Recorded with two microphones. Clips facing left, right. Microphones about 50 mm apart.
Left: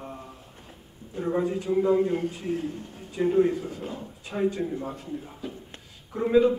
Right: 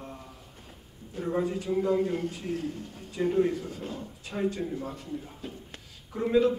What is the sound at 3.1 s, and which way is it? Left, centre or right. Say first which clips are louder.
A man's voice: left 3 dB; centre.